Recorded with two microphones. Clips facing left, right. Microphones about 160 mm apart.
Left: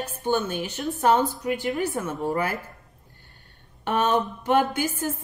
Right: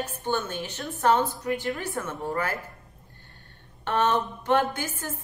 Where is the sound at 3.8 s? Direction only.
15° left (ahead or behind).